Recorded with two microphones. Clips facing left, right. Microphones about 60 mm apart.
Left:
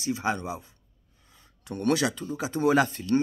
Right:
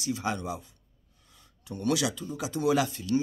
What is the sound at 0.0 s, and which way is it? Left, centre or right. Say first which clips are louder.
Speech: left 3 dB; left.